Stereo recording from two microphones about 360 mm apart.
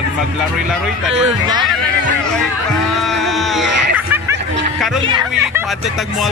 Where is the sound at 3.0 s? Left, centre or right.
Centre.